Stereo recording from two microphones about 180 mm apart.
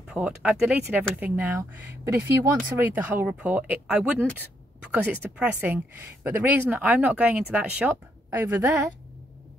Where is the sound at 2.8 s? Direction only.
10° right (ahead or behind).